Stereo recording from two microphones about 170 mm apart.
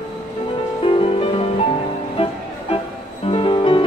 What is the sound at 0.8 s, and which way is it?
Music, 30° left (ahead or behind).